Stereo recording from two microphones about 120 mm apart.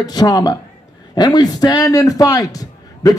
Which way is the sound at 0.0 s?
35° left (ahead or behind).